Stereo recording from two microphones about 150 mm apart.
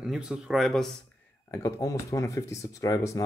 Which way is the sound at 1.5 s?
20° left (ahead or behind).